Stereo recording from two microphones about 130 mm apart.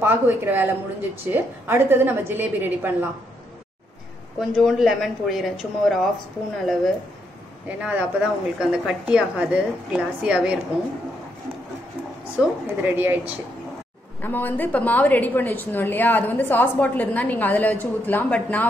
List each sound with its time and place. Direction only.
0.0 s a woman's voice: 15° right (ahead or behind)
4.4 s speech: centre (ahead or behind)
7.6 s a woman's voice: 10° right (ahead or behind)
12.6 s a woman's voice: 15° right (ahead or behind)
14.2 s a woman's voice: 15° left (ahead or behind)